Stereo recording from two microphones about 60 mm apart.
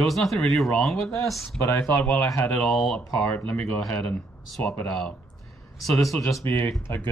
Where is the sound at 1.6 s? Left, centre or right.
Left.